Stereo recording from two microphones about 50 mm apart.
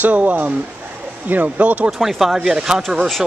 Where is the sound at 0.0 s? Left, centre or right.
Right.